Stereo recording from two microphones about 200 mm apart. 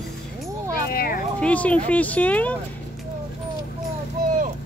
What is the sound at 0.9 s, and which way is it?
Vehicle, 45° left (ahead or behind).